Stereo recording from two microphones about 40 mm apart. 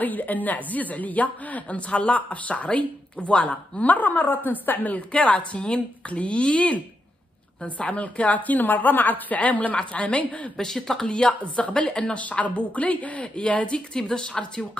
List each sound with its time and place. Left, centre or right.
0.0 s a woman's voice: left
3.9 s a woman's voice: left
9.8 s a woman's voice: left
10.6 s speech: centre
11.1 s speech: left
12.2 s a woman's voice: left
13.7 s speech: centre